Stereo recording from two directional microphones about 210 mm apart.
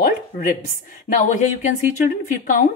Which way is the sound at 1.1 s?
35° left (ahead or behind).